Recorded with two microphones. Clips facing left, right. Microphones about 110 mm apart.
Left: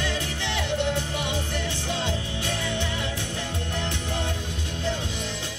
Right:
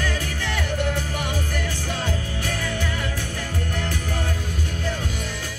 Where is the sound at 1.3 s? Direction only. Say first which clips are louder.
Right 1 dB; 25° left (ahead or behind).